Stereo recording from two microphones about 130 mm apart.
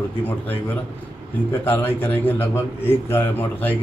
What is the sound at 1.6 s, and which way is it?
A man's voice, 15° left (ahead or behind).